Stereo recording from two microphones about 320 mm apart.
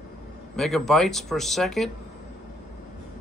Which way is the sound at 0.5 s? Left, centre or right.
Centre.